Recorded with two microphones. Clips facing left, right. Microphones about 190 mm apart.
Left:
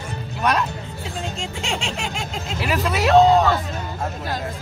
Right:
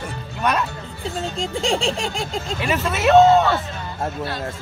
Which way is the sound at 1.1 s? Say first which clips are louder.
Right 5 dB; 35° right (ahead or behind).